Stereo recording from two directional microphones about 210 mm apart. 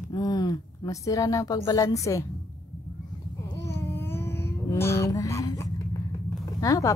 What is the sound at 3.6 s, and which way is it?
Music, 10° left (ahead or behind).